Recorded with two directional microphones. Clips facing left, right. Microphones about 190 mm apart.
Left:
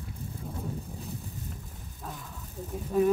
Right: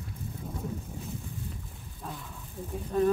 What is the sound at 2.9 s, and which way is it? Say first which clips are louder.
Speech: left 1 dB; 10° left (ahead or behind).